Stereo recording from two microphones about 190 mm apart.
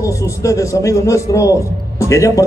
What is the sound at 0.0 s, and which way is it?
A man's voice, 15° left (ahead or behind).